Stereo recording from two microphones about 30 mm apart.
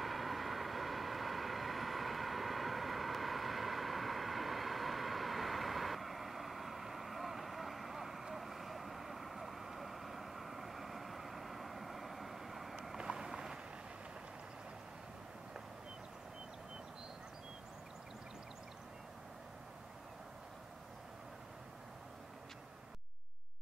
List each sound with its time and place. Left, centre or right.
0.0 s vehicle: centre
12.9 s vehicle: right